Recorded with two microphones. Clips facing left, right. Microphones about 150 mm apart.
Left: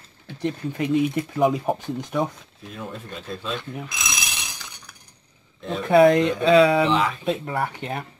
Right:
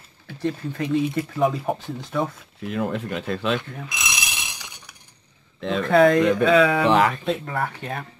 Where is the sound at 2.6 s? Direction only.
80° right.